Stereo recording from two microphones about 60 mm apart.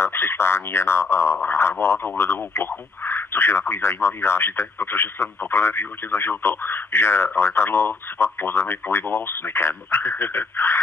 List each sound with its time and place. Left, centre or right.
0.0 s speech: left